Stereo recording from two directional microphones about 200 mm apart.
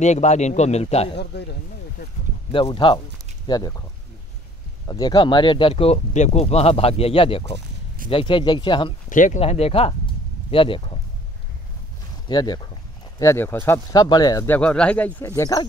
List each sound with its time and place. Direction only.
0.0 s a man's voice: 35° left (ahead or behind)
1.1 s speech: 55° left (ahead or behind)
2.5 s speech: 25° left (ahead or behind)
4.8 s speech: 20° left (ahead or behind)
9.1 s a man's voice: 40° left (ahead or behind)
9.4 s speech: 30° left (ahead or behind)
12.3 s speech: 20° left (ahead or behind)